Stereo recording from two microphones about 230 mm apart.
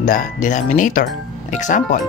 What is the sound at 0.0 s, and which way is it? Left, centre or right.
Speech, left.